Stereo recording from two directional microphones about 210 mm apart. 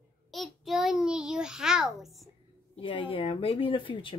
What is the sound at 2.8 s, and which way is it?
A woman's voice, 25° left (ahead or behind).